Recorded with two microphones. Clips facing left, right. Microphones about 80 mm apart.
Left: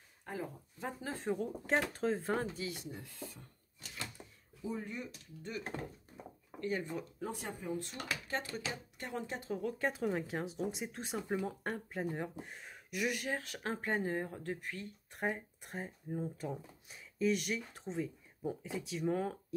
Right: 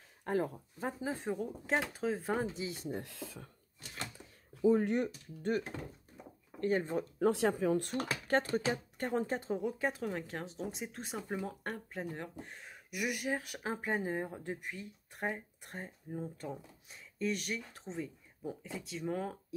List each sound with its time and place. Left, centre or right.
0.2 s speech: right
1.1 s speech: centre
1.4 s speech: centre
2.4 s speech: right
3.0 s speech: right
4.6 s speech: right
6.6 s speech: right
7.2 s speech: right
7.8 s speech: right
9.8 s speech: centre
15.1 s speech: centre